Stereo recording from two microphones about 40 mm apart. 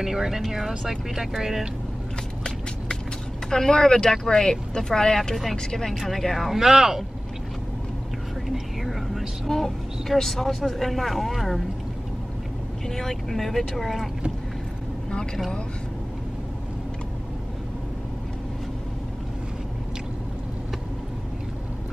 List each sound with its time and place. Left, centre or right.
0.0 s speech: centre
3.4 s speech: centre
5.3 s speech: centre
6.5 s speech: centre
8.5 s a sound: centre
9.5 s speech: centre
12.8 s speech: centre